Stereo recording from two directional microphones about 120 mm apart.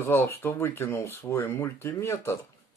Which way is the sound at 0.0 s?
20° left (ahead or behind).